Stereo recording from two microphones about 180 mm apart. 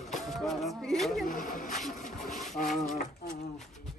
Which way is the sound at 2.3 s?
Centre (ahead or behind).